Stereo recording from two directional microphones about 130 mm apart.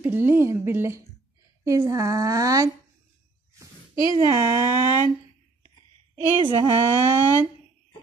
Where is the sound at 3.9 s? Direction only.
40° left (ahead or behind).